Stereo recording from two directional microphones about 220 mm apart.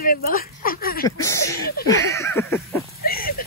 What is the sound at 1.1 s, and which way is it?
Speech, 15° left (ahead or behind).